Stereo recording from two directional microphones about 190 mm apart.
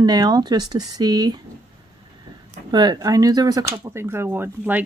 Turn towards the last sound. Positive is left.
turn(degrees=-10)  # may be behind; listen again after turning